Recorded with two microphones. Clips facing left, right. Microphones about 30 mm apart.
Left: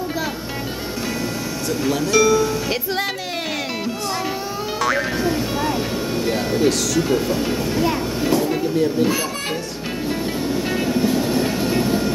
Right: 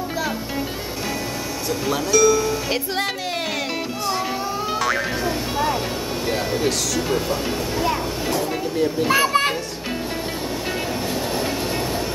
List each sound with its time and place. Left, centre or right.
2.0 s speech: centre
4.7 s music: centre
6.2 s speech: centre
7.2 s a sound: centre
9.1 s a child's voice: right
11.0 s train: centre